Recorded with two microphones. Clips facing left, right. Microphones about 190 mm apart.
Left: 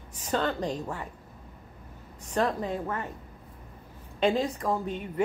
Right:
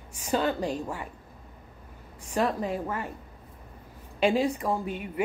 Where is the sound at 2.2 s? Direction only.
10° right (ahead or behind).